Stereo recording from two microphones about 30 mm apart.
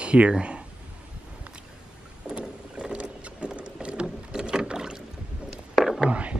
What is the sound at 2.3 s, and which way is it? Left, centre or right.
Boat, right.